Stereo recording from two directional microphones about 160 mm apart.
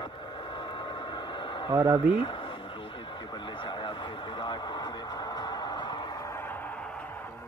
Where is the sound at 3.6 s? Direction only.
30° left (ahead or behind).